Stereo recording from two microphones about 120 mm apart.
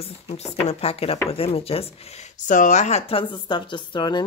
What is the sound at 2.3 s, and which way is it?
Speech, 90° left.